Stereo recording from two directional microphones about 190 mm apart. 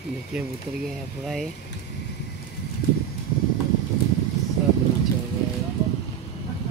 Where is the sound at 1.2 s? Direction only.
Centre (ahead or behind).